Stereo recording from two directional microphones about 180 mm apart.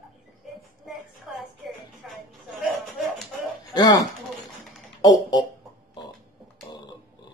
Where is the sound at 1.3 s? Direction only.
Centre (ahead or behind).